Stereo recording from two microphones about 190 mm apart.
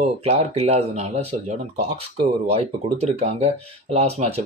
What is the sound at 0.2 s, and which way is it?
Speech, 35° right (ahead or behind).